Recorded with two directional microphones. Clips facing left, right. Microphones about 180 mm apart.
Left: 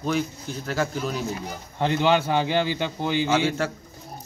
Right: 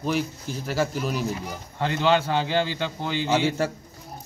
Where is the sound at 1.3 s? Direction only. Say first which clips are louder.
Even; 20° left (ahead or behind).